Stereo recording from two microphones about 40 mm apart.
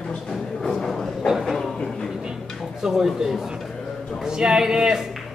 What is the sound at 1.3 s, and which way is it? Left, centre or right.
Speech, centre.